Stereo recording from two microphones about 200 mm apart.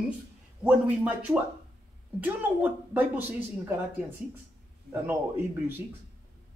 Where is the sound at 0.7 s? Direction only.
5° right (ahead or behind).